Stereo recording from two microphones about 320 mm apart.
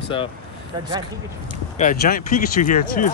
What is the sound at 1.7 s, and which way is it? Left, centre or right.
Speech, left.